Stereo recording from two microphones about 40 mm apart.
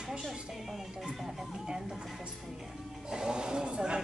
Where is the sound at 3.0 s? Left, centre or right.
Centre.